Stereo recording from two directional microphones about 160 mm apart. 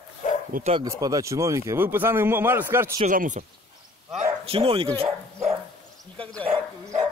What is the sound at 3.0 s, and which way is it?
Speech, 55° right (ahead or behind).